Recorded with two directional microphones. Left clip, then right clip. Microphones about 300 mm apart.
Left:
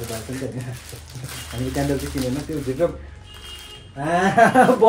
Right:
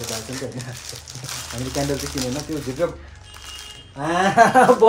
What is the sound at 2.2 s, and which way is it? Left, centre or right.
Speech, right.